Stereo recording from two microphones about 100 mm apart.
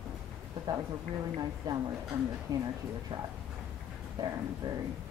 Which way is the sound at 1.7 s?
40° right (ahead or behind).